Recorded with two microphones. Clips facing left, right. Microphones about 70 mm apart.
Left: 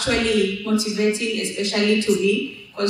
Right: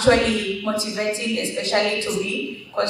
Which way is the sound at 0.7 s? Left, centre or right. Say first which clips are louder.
Left 3 dB; right.